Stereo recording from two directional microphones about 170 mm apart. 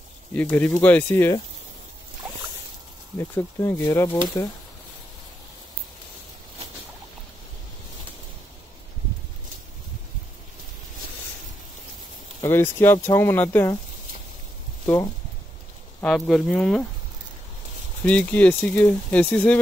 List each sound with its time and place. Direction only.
0.3 s speech: 10° left (ahead or behind)
3.2 s speech: 15° left (ahead or behind)
12.4 s speech: 15° left (ahead or behind)
16.0 s speech: 5° left (ahead or behind)
18.0 s speech: 10° left (ahead or behind)